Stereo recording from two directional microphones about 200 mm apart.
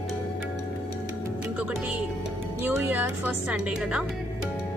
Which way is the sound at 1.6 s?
5° right (ahead or behind).